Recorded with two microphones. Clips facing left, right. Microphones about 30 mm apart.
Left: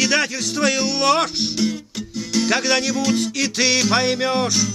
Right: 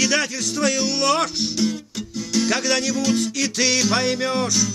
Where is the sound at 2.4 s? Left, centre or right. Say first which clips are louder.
Left 3 dB; left.